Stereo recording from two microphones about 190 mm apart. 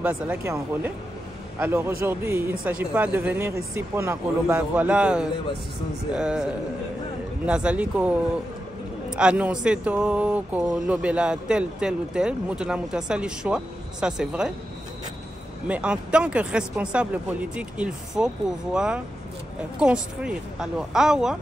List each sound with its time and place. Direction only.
0.0 s speech: 10° right (ahead or behind)
7.4 s speech: 5° right (ahead or behind)
9.1 s speech: 5° right (ahead or behind)
15.7 s speech: 5° right (ahead or behind)